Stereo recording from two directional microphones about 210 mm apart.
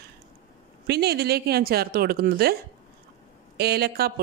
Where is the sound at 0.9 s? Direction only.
50° right (ahead or behind).